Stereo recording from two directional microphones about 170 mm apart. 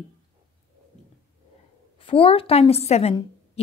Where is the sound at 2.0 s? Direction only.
30° left (ahead or behind).